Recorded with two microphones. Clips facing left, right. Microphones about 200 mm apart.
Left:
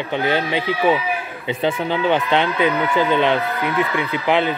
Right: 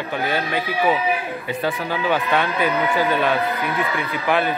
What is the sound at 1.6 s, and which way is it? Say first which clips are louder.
Speech: left 4 dB; 20° left (ahead or behind).